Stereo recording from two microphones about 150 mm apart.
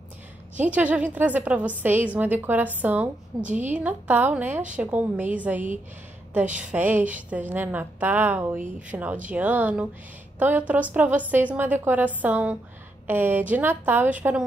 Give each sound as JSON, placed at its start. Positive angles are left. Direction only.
{"t": 0.6, "sound": "a woman's voice", "side_deg": -10}
{"t": 3.4, "sound": "a woman's voice", "side_deg": -55}
{"t": 3.7, "sound": "a woman's voice", "side_deg": -10}
{"t": 6.7, "sound": "a woman's voice", "side_deg": -10}